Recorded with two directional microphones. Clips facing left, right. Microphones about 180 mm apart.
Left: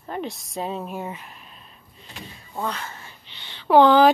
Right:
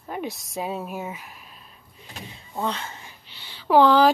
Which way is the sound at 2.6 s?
25° right (ahead or behind).